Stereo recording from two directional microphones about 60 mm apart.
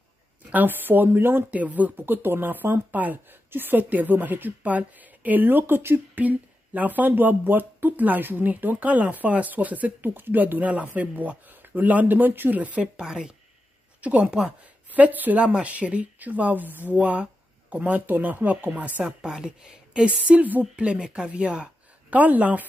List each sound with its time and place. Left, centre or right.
0.5 s a woman's voice: right
1.5 s a woman's voice: right
6.1 s speech: right
12.8 s a woman's voice: centre
14.9 s speech: right
19.0 s a woman's voice: centre